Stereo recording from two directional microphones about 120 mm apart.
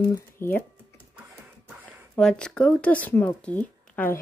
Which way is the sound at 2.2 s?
5° left (ahead or behind).